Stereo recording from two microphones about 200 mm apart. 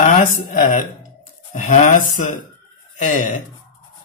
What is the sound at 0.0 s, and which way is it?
Speech, 35° left (ahead or behind).